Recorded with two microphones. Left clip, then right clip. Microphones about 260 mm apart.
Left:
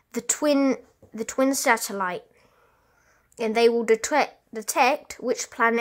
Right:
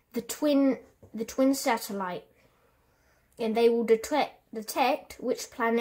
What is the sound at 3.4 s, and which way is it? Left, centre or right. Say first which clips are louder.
Speech: left 4 dB; left.